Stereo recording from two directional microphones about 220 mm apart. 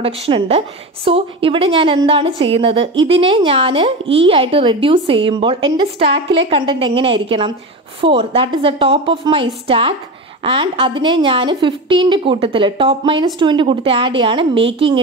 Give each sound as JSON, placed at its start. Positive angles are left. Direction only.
{"t": 0.0, "sound": "a woman's voice", "side_deg": -25}
{"t": 6.0, "sound": "a woman's voice", "side_deg": -55}
{"t": 6.3, "sound": "a woman's voice", "side_deg": -25}